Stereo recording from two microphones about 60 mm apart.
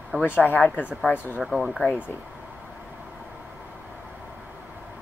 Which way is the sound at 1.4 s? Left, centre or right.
Centre.